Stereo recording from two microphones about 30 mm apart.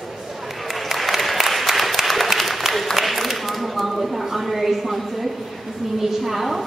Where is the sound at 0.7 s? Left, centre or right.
Centre.